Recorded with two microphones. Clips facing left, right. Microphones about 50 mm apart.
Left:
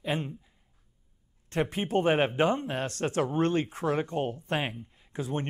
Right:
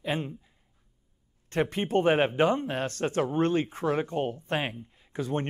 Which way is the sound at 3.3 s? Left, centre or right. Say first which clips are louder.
Right 1 dB; right.